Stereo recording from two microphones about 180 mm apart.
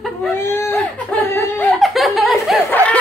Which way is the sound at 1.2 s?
15° left (ahead or behind).